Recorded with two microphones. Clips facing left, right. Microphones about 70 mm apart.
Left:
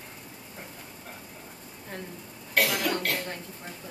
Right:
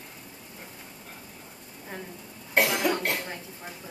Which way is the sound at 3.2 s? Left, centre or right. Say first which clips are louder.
Left 1 dB; centre.